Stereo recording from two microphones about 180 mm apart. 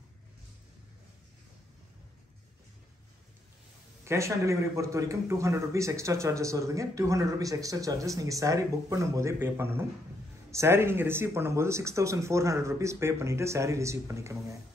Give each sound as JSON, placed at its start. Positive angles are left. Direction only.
{"t": 4.0, "sound": "a man's voice", "side_deg": -15}